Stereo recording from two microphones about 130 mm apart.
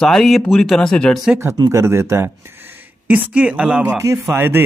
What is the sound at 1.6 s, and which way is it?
Speech, 20° right (ahead or behind).